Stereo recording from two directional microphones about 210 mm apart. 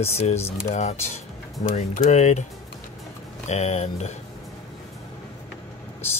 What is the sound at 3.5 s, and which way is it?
Speech, 30° left (ahead or behind).